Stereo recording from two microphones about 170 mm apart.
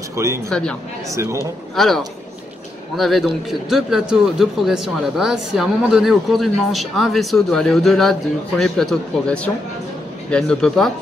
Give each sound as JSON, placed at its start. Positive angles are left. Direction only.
{"t": 0.1, "sound": "a man's voice", "side_deg": -15}
{"t": 0.5, "sound": "a man's voice", "side_deg": 5}
{"t": 1.1, "sound": "a man's voice", "side_deg": -15}
{"t": 1.8, "sound": "a man's voice", "side_deg": 0}